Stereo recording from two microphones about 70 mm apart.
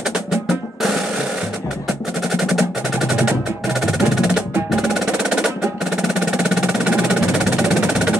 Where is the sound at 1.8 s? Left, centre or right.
Centre.